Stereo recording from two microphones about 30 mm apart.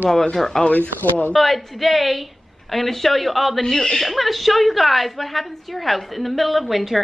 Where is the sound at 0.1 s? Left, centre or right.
Left.